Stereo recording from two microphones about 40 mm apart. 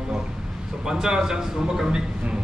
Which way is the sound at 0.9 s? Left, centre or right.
Centre.